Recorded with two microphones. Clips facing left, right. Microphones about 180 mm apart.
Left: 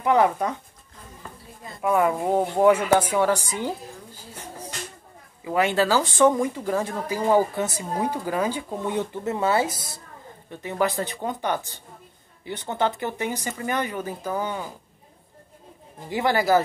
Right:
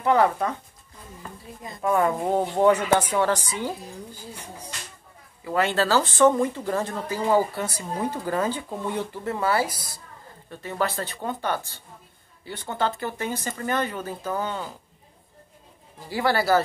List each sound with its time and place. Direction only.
0.0 s a woman's voice: 15° left (ahead or behind)
1.6 s speech: 20° right (ahead or behind)
2.0 s a woman's voice: 5° left (ahead or behind)
5.4 s a woman's voice: 15° left (ahead or behind)
16.1 s a woman's voice: 20° left (ahead or behind)